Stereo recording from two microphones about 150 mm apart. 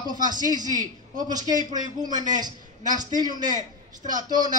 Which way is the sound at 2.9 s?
30° right (ahead or behind).